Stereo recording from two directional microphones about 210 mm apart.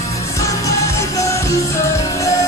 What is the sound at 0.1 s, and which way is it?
Music, 15° left (ahead or behind).